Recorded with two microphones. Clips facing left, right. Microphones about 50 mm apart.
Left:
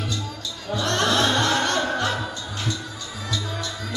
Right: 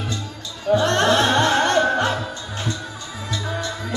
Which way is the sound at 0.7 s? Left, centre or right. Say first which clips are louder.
Right 6 dB; right.